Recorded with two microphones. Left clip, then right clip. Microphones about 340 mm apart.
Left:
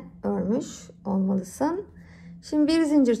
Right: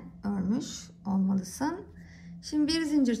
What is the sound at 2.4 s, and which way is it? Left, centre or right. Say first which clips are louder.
Speech: left 6 dB; centre.